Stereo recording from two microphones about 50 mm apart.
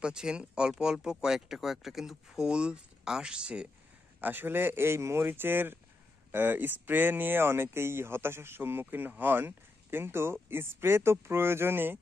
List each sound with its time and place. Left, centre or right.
0.0 s speech: centre
4.2 s speech: right